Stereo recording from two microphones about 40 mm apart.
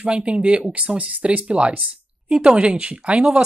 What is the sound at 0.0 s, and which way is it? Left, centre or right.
Speech, right.